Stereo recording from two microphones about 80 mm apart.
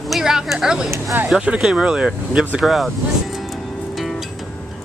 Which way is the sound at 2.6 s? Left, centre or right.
Centre.